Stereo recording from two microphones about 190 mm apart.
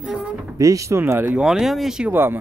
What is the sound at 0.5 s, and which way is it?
Speech, 15° right (ahead or behind).